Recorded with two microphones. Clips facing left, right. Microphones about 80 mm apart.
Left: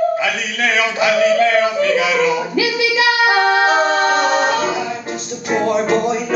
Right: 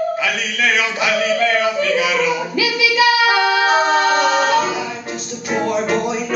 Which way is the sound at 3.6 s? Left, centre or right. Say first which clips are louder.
Even; centre.